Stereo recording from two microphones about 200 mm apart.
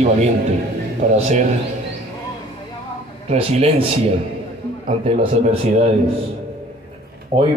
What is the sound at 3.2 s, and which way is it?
Speech, 30° right (ahead or behind).